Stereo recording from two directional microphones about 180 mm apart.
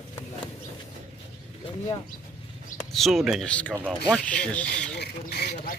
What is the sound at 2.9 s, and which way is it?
Speech, centre (ahead or behind).